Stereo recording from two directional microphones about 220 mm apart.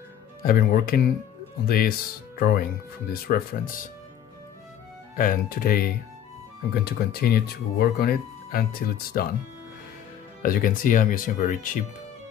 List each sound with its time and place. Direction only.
0.4 s speech: 40° left (ahead or behind)
5.1 s speech: 40° left (ahead or behind)
10.4 s speech: 40° left (ahead or behind)